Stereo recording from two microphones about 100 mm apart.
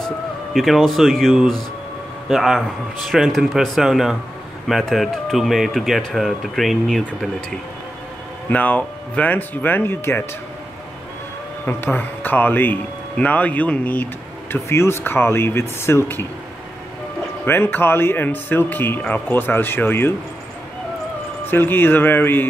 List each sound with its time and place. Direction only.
0.5 s speech: centre (ahead or behind)
8.5 s speech: 15° left (ahead or behind)
11.6 s a man's voice: 20° left (ahead or behind)
14.5 s a man's voice: 25° left (ahead or behind)
17.5 s a man's voice: 20° left (ahead or behind)
21.5 s a man's voice: 20° left (ahead or behind)